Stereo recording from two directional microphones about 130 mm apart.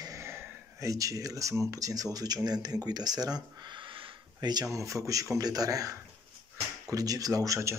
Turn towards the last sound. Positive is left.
turn(degrees=-25)  # may be behind; listen again after turning